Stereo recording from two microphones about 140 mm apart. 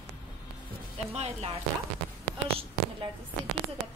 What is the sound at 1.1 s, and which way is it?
Speech, 50° right (ahead or behind).